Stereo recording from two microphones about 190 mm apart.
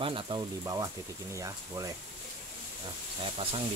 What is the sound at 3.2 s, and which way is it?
Speech, 30° right (ahead or behind).